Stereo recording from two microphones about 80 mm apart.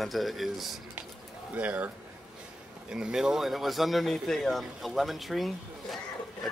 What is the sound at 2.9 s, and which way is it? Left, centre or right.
Speech, centre.